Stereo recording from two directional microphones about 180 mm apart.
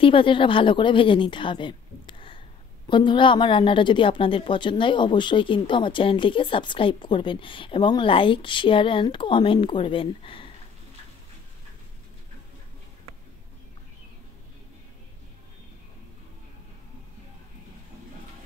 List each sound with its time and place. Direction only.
0.0 s a woman's voice: 30° left (ahead or behind)